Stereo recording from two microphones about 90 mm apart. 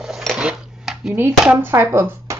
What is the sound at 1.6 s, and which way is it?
Speech, 25° right (ahead or behind).